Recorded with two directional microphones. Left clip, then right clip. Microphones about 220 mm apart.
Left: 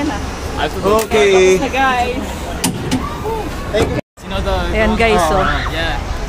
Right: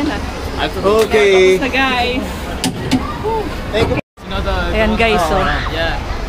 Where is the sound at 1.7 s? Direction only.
15° right (ahead or behind).